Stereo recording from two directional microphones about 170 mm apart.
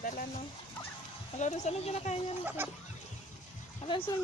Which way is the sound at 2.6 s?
10° right (ahead or behind).